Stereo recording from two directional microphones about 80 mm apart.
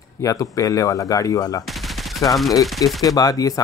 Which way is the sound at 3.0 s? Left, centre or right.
Left.